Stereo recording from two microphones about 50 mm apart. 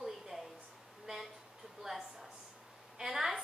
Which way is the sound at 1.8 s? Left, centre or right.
Centre.